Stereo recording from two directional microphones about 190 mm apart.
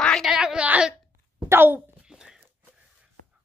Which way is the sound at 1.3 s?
10° right (ahead or behind).